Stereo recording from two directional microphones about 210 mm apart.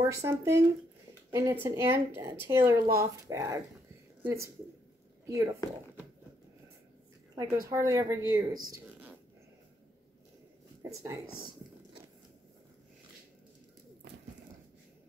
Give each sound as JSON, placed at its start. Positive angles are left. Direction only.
{"t": 0.0, "sound": "a woman's voice", "side_deg": -15}
{"t": 7.7, "sound": "a woman's voice", "side_deg": -15}
{"t": 10.8, "sound": "speech", "side_deg": -15}